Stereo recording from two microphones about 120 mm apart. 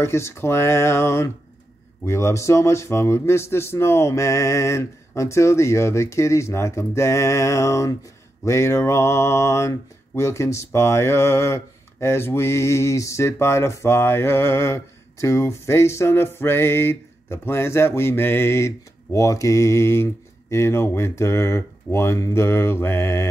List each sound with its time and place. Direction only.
0.0 s mantra: 20° left (ahead or behind)